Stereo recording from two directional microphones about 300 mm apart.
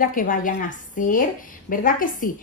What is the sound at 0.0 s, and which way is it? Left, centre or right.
A woman's voice, left.